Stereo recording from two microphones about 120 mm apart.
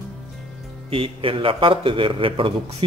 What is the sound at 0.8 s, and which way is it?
A man's voice, 50° right (ahead or behind).